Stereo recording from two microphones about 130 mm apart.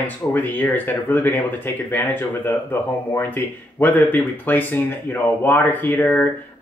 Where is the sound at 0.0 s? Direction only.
15° left (ahead or behind).